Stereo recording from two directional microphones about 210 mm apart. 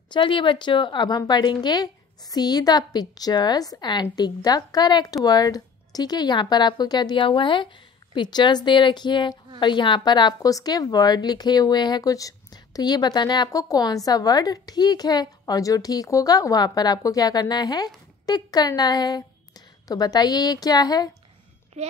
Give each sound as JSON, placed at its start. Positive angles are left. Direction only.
{"t": 0.1, "sound": "a woman's voice", "side_deg": 25}
{"t": 21.8, "sound": "speech", "side_deg": -30}